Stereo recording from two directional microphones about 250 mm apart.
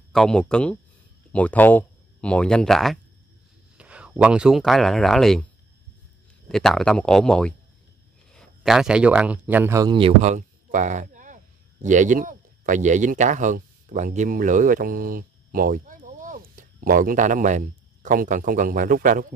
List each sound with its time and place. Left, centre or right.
0.1 s speech: centre
6.5 s speech: centre; by 19.2 s right